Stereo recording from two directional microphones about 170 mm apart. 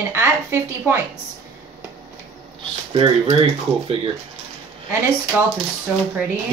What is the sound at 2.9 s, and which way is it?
Speech, 35° right (ahead or behind).